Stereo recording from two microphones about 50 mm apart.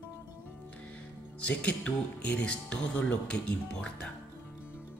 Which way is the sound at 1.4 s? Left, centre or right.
Left.